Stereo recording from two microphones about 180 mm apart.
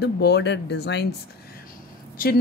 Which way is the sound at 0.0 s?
65° left (ahead or behind).